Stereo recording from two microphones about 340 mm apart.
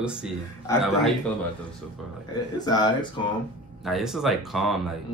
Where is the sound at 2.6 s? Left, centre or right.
Centre.